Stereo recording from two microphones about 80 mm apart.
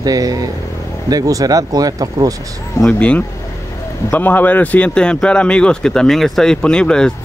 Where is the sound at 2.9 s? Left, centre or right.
Centre.